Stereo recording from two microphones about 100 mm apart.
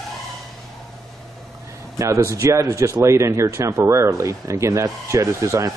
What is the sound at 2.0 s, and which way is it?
Speech, 30° right (ahead or behind).